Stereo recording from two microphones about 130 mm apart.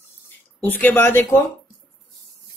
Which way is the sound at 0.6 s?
15° left (ahead or behind).